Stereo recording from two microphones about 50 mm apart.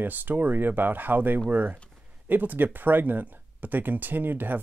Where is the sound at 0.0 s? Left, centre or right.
Right.